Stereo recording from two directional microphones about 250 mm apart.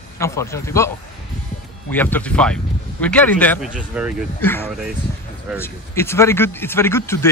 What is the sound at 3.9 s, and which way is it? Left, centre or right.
Speech, centre.